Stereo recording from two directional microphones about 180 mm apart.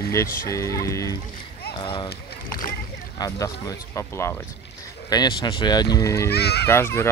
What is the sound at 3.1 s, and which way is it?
Speech, 20° left (ahead or behind).